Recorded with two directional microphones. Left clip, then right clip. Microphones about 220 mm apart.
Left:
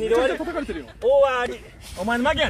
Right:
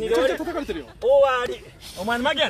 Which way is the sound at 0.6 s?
30° right (ahead or behind).